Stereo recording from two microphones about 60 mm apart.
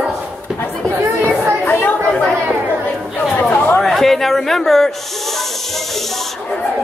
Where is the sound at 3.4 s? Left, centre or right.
Left.